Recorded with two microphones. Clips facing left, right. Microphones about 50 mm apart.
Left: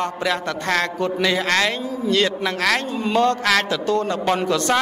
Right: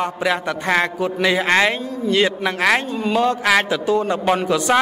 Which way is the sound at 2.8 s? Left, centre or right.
Centre.